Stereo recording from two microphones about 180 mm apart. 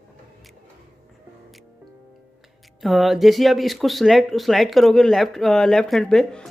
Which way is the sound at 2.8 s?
Centre (ahead or behind).